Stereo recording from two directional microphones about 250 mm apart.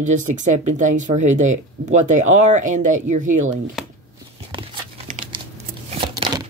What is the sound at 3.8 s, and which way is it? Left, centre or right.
Speech, centre.